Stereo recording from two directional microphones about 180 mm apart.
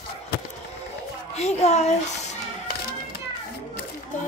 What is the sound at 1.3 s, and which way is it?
Speech, 35° left (ahead or behind).